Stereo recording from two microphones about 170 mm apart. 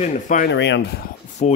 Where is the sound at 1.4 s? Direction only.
45° left (ahead or behind).